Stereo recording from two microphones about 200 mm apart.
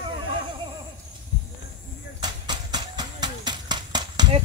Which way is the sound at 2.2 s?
20° right (ahead or behind).